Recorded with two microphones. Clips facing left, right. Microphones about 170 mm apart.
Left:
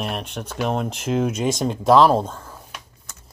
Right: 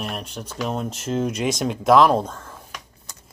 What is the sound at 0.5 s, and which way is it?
Speech, 65° left (ahead or behind).